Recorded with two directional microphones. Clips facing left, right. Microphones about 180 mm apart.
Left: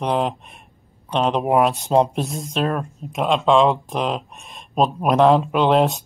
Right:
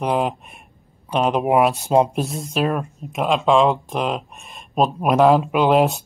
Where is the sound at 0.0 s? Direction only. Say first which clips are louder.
Right 1 dB; 5° right (ahead or behind).